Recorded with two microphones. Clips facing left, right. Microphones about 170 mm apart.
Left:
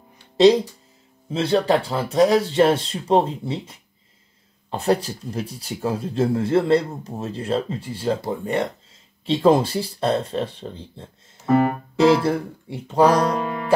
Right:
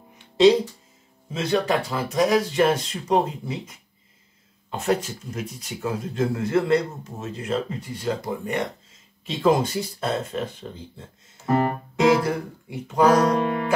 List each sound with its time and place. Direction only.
0.2 s music: 35° left (ahead or behind)
1.3 s speech: 30° left (ahead or behind)